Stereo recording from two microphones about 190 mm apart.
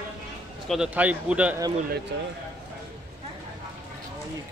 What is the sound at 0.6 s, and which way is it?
Speech, centre (ahead or behind).